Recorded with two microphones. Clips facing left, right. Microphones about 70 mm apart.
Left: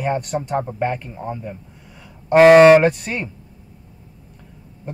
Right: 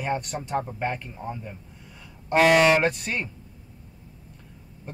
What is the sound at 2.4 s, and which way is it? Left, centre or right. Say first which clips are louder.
Speech: left 10 dB; left.